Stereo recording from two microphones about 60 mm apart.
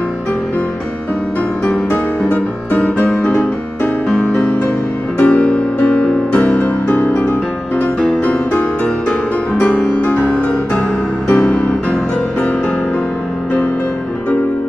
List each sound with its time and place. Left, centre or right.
2.2 s music: left
4.1 s music: centre